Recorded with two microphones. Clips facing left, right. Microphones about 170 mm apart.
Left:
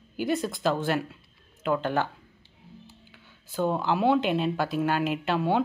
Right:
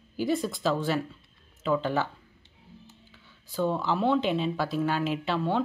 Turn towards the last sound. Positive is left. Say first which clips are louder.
# left 2 dB
turn(degrees=5)  # may be behind; listen again after turning